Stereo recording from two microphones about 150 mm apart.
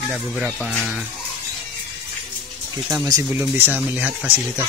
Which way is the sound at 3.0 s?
20° right (ahead or behind).